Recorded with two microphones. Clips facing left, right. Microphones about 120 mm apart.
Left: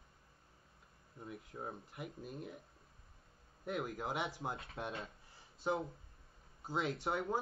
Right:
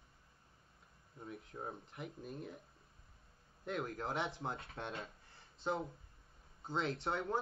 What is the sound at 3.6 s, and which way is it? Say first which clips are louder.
Speech: left 1 dB; 5° left (ahead or behind).